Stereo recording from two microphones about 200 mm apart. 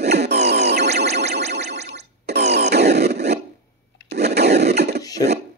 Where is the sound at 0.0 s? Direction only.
55° right (ahead or behind).